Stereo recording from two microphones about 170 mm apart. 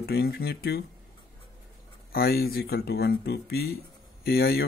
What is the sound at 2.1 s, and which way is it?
Speech, 65° left (ahead or behind).